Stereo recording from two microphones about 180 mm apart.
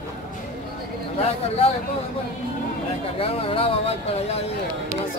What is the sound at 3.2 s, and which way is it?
Speech, 30° left (ahead or behind).